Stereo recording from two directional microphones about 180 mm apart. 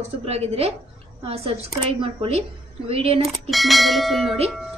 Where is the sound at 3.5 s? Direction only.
Centre (ahead or behind).